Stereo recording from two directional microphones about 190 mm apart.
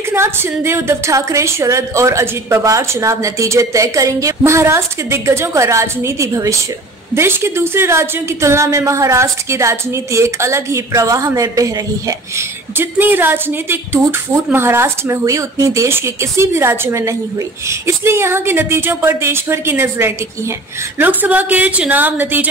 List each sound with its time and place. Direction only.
0.1 s a woman's voice: 10° right (ahead or behind)